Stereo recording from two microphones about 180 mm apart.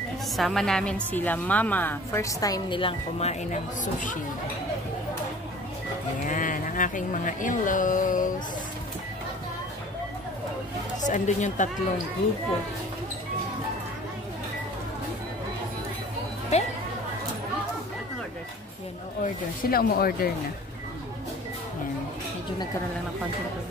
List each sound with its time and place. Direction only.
0.4 s a woman's voice: centre (ahead or behind); by 4.2 s 45° left (ahead or behind)
6.2 s speech: 45° left (ahead or behind)
11.1 s speech: 45° left (ahead or behind)
16.5 s speech: 40° left (ahead or behind)
19.2 s speech: 55° left (ahead or behind)